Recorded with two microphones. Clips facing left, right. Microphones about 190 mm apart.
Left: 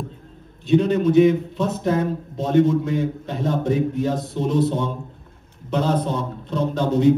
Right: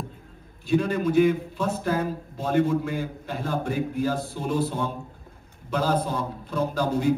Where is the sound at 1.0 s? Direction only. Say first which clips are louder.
Left 5 dB; 25° left (ahead or behind).